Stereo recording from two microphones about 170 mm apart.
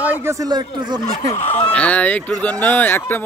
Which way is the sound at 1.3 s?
35° left (ahead or behind).